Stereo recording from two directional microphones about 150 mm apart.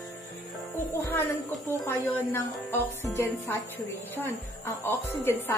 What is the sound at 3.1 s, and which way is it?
A woman's voice, 20° left (ahead or behind).